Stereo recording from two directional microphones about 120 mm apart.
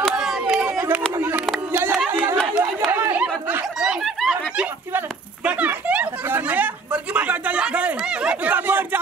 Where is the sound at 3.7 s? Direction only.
5° right (ahead or behind).